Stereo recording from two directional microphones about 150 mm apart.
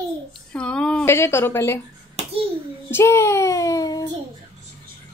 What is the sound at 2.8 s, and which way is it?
Speech, 15° left (ahead or behind).